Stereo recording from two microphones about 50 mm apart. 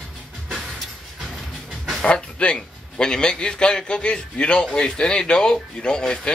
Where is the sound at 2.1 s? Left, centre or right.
Centre.